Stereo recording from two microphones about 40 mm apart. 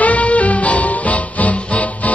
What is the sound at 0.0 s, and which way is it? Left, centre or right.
Music, left.